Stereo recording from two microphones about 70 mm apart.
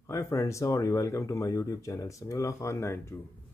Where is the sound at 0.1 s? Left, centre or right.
Left.